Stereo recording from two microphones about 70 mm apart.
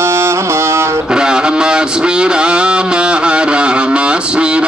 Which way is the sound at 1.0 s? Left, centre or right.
Centre.